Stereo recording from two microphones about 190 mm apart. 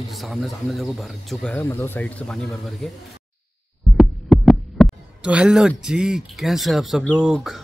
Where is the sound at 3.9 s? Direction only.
5° left (ahead or behind).